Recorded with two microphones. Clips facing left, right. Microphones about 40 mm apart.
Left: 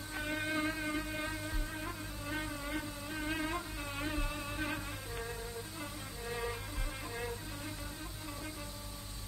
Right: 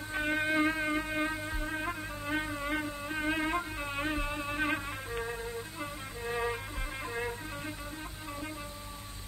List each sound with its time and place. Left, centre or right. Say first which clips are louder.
0.1 s insect: right 7 dB; right
5.8 s music: right 5 dB; right